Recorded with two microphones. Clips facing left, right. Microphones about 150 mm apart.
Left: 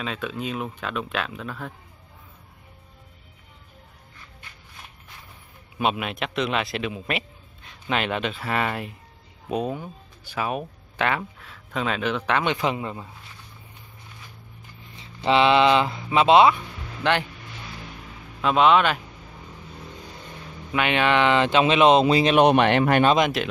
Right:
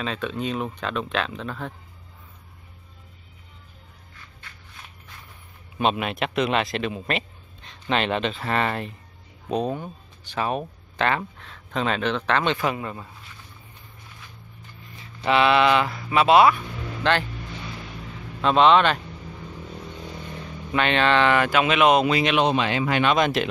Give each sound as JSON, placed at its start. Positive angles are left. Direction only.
{"t": 0.0, "sound": "speech", "side_deg": 5}
{"t": 5.8, "sound": "speech", "side_deg": 5}
{"t": 15.0, "sound": "speech", "side_deg": 25}
{"t": 18.4, "sound": "speech", "side_deg": 5}
{"t": 20.7, "sound": "speech", "side_deg": 10}
{"t": 22.4, "sound": "speech", "side_deg": 60}